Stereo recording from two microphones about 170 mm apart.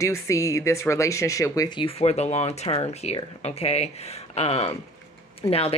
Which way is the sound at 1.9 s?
35° left (ahead or behind).